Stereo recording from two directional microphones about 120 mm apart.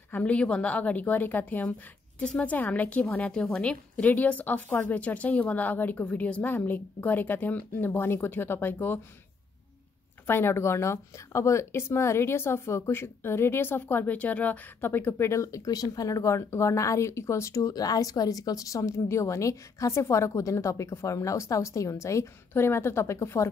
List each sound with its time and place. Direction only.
0.1 s a woman's voice: 10° left (ahead or behind)
10.2 s speech: 20° left (ahead or behind)